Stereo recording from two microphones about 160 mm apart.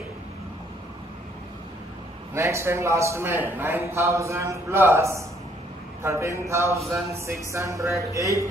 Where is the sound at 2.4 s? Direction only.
15° right (ahead or behind).